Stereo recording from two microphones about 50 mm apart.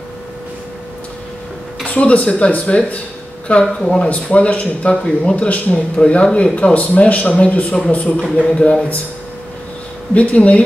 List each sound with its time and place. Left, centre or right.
1.9 s speech: left
8.2 s speech: centre
10.1 s speech: left